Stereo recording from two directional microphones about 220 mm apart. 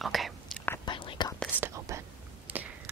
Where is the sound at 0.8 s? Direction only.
20° left (ahead or behind).